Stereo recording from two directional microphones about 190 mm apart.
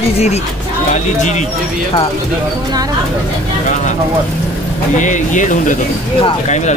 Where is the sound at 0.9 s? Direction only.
40° left (ahead or behind).